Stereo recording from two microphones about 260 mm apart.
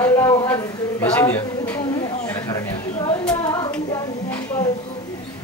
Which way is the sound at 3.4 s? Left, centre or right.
Centre.